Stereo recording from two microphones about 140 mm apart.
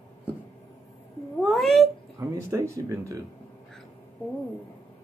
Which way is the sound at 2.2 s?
20° right (ahead or behind).